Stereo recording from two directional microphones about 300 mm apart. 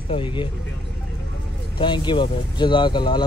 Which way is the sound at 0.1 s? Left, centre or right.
Centre.